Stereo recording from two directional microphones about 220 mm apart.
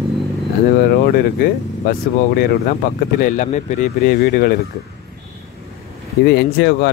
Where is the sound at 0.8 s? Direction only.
45° left (ahead or behind).